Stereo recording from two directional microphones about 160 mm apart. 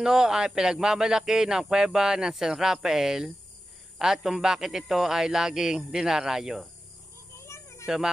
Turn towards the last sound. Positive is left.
turn(degrees=15)  # may be behind; listen again after turning